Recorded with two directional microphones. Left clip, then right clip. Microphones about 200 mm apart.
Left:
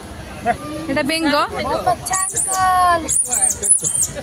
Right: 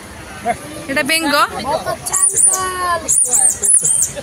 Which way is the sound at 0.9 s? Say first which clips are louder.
Right 3 dB; 10° left (ahead or behind).